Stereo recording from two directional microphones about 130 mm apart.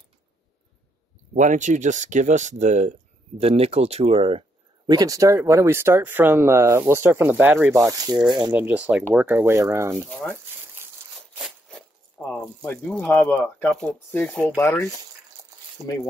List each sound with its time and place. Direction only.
1.3 s speech: 75° right (ahead or behind)
3.3 s speech: 50° right (ahead or behind)
4.8 s speech: 30° right (ahead or behind)
8.5 s speech: 10° right (ahead or behind)
9.4 s speech: 20° right (ahead or behind)
10.4 s a sound: 15° right (ahead or behind)
11.3 s a sound: centre (ahead or behind)
12.9 s speech: 5° left (ahead or behind)
14.3 s speech: centre (ahead or behind)
14.6 s speech: 20° left (ahead or behind)